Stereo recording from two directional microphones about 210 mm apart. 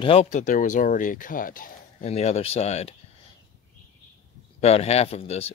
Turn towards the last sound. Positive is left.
turn(degrees=30)  # may be behind; listen again after turning